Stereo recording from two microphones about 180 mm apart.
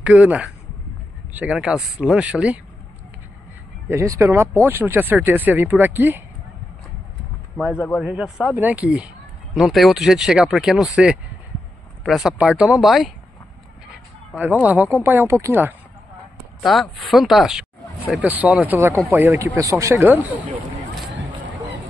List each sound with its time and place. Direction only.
0.0 s speech: 5° right (ahead or behind)
3.9 s speech: 15° right (ahead or behind)
7.7 s a man's voice: 10° left (ahead or behind)
8.0 s speech: 5° right (ahead or behind)
14.3 s speech: 10° right (ahead or behind)
16.6 s speech: centre (ahead or behind)